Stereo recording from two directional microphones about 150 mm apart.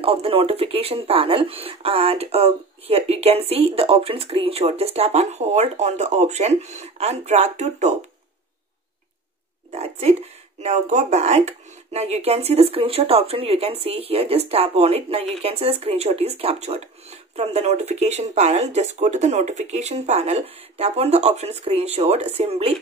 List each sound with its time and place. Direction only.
0.0 s speech: 40° right (ahead or behind)
9.7 s speech: 45° right (ahead or behind)